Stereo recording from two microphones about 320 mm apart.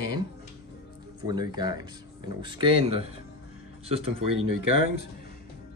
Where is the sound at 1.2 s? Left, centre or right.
Centre.